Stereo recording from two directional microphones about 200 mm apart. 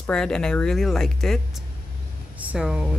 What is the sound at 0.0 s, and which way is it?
A woman's voice, 5° left (ahead or behind).